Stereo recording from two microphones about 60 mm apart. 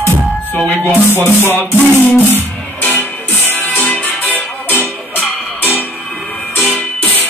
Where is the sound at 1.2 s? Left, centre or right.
Left.